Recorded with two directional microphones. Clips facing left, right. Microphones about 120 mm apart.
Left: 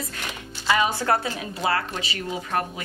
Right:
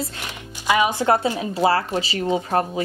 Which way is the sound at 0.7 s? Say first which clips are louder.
Right 4 dB; 15° right (ahead or behind).